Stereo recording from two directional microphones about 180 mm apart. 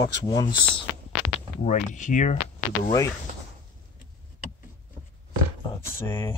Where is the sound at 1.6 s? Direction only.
45° left (ahead or behind).